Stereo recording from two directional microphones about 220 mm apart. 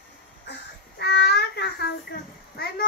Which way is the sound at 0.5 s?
50° left (ahead or behind).